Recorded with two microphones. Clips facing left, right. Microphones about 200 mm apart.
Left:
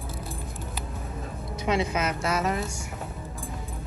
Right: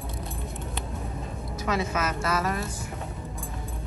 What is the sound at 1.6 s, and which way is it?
Speech, 20° left (ahead or behind).